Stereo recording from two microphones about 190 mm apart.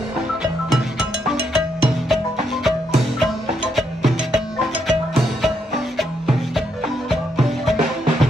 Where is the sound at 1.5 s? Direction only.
Centre (ahead or behind).